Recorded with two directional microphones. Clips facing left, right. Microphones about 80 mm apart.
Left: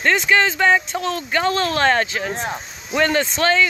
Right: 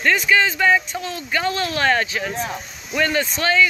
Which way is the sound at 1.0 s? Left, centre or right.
Left.